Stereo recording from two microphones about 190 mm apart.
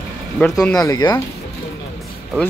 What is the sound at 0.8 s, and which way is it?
Speech, 20° left (ahead or behind).